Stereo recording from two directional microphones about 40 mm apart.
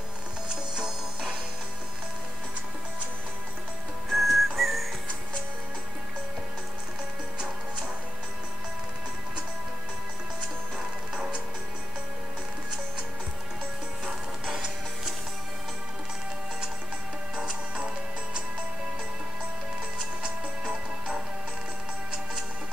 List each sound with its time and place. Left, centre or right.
0.5 s music: centre
4.1 s music: centre
11.1 s music: right
14.0 s music: centre
17.4 s music: centre
20.0 s music: centre